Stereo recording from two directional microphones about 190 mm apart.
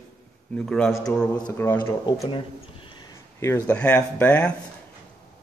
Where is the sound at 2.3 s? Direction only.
25° left (ahead or behind).